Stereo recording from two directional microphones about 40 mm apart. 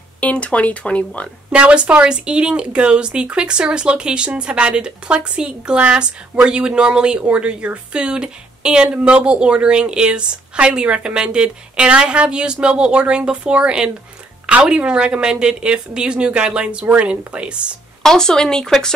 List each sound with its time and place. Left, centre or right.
0.2 s speech: left
1.5 s speech: right
18.0 s speech: centre